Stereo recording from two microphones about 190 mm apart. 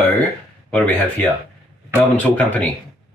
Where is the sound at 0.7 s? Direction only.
5° left (ahead or behind).